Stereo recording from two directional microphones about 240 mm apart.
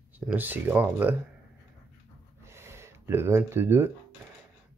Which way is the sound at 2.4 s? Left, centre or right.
Centre.